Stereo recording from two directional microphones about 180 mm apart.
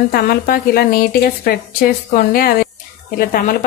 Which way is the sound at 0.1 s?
55° left (ahead or behind).